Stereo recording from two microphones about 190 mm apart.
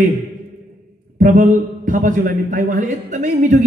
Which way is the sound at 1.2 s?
45° right (ahead or behind).